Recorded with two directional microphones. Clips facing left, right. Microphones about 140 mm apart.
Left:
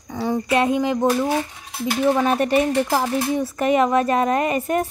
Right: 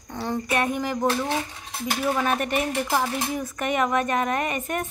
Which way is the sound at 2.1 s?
30° left (ahead or behind).